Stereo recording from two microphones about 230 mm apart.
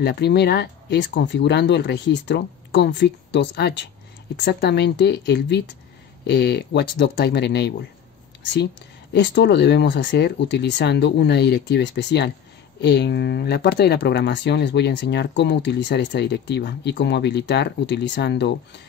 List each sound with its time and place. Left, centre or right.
0.0 s speech: left
9.1 s speech: left